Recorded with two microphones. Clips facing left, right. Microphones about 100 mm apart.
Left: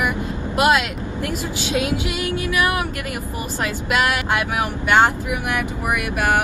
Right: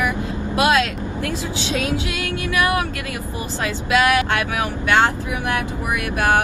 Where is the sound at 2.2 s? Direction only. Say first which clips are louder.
Even; 20° left (ahead or behind).